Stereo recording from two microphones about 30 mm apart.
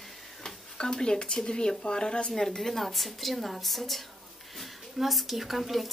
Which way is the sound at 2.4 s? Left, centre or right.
Centre.